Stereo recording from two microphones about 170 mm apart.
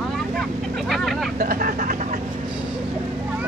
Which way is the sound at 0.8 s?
Centre (ahead or behind).